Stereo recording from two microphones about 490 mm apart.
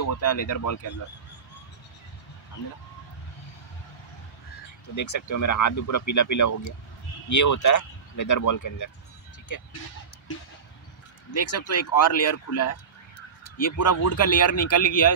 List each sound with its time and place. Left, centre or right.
0.0 s speech: left
4.9 s speech: left
11.3 s speech: left